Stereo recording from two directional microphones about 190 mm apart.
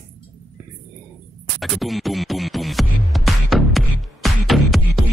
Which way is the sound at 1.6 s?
Centre (ahead or behind).